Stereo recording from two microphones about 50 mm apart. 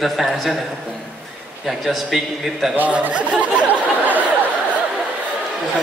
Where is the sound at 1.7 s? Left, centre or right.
Centre.